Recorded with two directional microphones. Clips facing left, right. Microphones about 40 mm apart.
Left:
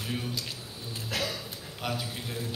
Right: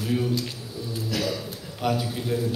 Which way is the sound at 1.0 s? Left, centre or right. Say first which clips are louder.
Right 4 dB; left.